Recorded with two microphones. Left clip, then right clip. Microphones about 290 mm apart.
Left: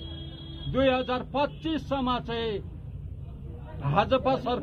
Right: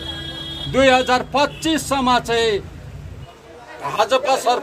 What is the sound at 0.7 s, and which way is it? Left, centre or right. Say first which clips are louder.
A man's voice: right 11 dB; right.